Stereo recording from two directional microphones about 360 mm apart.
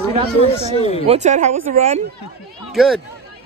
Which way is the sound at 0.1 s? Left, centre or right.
Centre.